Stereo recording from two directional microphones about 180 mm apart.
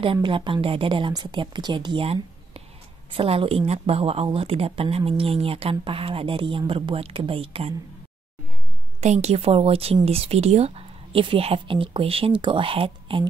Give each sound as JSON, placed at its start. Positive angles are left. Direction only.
{"t": 0.0, "sound": "speech", "side_deg": -30}
{"t": 9.0, "sound": "speech", "side_deg": -40}